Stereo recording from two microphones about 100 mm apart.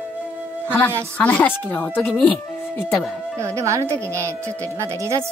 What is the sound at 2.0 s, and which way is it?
Speech, 5° left (ahead or behind).